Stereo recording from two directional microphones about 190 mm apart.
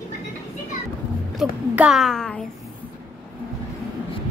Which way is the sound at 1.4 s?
5° right (ahead or behind).